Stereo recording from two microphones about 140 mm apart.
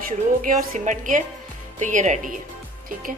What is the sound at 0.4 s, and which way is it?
A woman's voice, 65° right (ahead or behind).